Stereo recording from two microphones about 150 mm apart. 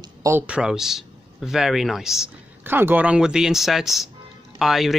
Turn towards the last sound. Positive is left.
turn(degrees=0)  # may be behind; listen again after turning